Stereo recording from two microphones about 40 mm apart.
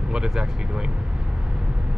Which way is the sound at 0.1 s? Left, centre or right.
Centre.